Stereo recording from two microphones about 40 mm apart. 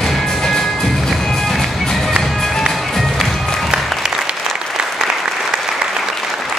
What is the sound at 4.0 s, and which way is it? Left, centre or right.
Applause, centre.